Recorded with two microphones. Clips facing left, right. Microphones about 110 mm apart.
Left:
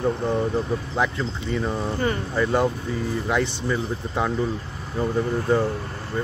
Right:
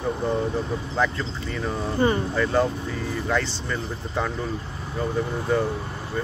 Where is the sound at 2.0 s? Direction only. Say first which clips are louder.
Right 7 dB; 25° right (ahead or behind).